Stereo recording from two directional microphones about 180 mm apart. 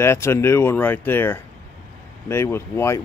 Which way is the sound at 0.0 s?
15° left (ahead or behind).